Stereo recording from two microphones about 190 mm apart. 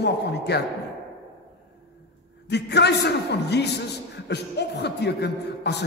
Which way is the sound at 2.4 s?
60° left (ahead or behind).